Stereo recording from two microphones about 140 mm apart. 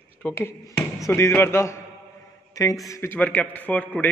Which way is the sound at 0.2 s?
15° left (ahead or behind).